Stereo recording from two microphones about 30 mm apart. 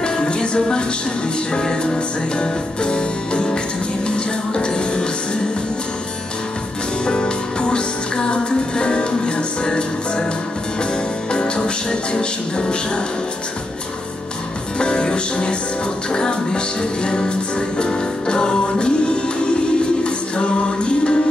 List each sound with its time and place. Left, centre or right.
0.0 s music: left
7.1 s music: left
11.3 s music: left
14.8 s music: left